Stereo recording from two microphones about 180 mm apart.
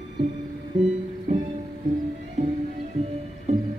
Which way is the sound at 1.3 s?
40° right (ahead or behind).